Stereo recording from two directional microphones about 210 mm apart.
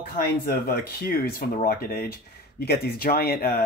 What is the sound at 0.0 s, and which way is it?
Speech, 45° left (ahead or behind).